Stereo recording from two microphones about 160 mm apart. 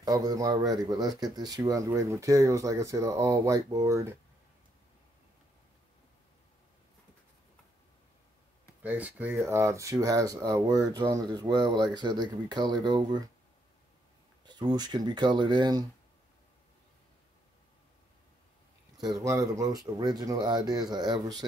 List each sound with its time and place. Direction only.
0.0 s speech: 25° right (ahead or behind)
8.8 s speech: 10° right (ahead or behind); by 13.2 s 25° right (ahead or behind)
14.4 s speech: 25° right (ahead or behind)
19.1 s speech: 20° right (ahead or behind)